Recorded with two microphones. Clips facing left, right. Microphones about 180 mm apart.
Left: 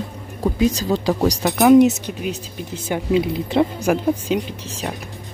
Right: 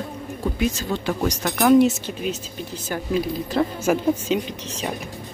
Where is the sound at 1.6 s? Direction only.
20° left (ahead or behind).